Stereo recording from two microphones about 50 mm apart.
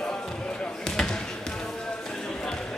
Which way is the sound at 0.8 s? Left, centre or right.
Centre.